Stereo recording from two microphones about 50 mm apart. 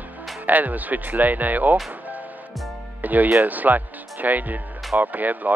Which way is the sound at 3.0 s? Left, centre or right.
Right.